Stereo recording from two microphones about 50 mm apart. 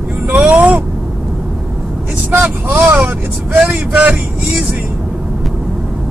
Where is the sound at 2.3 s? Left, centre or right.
Right.